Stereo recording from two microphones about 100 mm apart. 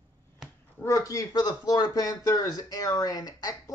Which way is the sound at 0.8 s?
35° left (ahead or behind).